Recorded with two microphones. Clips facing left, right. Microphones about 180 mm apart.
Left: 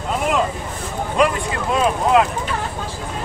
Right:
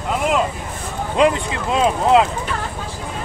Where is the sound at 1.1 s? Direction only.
20° right (ahead or behind).